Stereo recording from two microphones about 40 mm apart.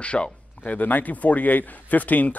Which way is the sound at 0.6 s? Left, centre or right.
Left.